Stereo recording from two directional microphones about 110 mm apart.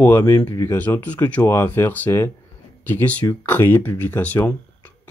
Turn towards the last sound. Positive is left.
turn(degrees=15)  # may be behind; listen again after turning